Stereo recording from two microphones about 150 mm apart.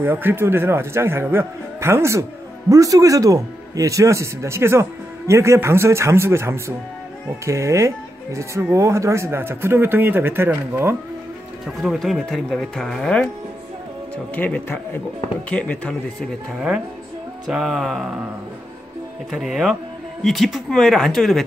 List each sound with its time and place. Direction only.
0.0 s speech: 15° right (ahead or behind)
11.6 s speech: centre (ahead or behind)
14.3 s a man's voice: 10° left (ahead or behind)
19.3 s speech: centre (ahead or behind)